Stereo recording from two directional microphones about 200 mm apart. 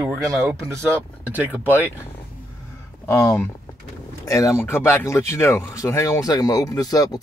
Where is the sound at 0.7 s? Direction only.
10° right (ahead or behind).